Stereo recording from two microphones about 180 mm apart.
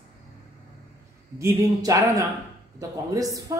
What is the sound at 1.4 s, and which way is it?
Speech, 20° right (ahead or behind).